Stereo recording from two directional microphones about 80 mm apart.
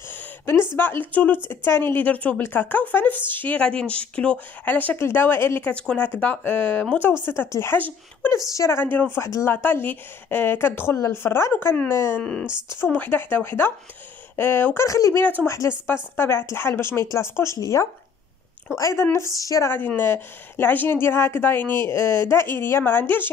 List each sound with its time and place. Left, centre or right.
0.1 s speech: left
5.7 s speech: centre
7.2 s speech: left
8.2 s speech: left
8.5 s speech: left
9.2 s speech: left
9.5 s speech: left
12.2 s speech: centre
12.6 s speech: left
14.9 s speech: left
20.0 s speech: left